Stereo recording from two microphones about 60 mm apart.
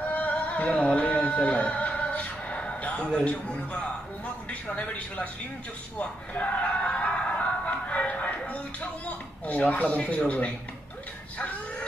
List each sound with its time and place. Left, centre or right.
0.1 s music: left
4.5 s speech: left
5.9 s a sound: left
9.5 s speech: left